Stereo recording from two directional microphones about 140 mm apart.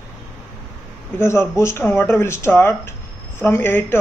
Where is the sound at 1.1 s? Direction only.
20° left (ahead or behind).